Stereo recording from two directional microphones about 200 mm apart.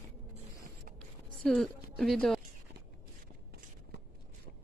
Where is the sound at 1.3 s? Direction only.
Centre (ahead or behind).